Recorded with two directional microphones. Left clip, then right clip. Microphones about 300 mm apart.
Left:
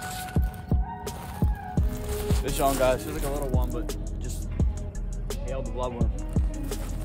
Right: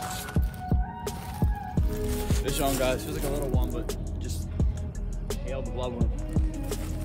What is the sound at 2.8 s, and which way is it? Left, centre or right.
Speech, centre.